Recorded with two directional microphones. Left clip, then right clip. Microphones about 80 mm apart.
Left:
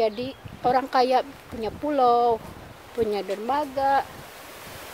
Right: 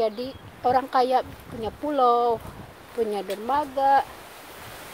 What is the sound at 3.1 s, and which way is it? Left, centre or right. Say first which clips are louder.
Speech: left 1 dB; left.